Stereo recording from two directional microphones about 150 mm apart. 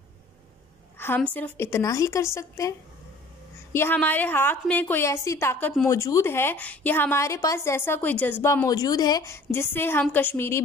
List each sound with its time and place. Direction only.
0.9 s a woman's voice: 15° left (ahead or behind)
3.7 s a woman's voice: 15° left (ahead or behind)
5.9 s a woman's voice: 20° left (ahead or behind)